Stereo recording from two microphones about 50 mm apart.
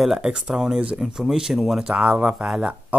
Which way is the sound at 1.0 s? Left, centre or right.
Centre.